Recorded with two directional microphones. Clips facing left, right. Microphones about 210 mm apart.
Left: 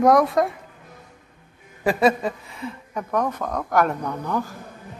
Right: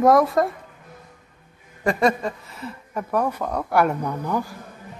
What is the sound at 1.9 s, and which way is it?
Speech, 5° left (ahead or behind).